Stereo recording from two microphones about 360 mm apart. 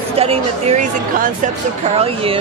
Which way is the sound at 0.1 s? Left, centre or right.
Centre.